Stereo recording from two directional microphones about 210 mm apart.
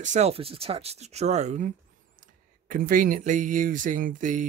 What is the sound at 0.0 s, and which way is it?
Speech, 35° right (ahead or behind).